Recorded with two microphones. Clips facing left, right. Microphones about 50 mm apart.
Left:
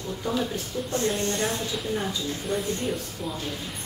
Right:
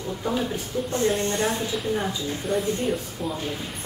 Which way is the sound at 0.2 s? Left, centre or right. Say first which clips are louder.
Right 1 dB; centre.